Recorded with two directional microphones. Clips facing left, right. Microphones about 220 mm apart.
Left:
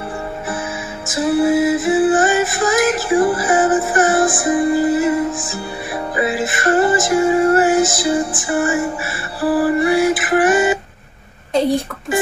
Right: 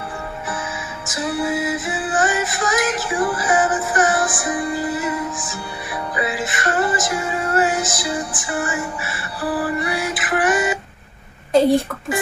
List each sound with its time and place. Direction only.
0.5 s music: 25° left (ahead or behind)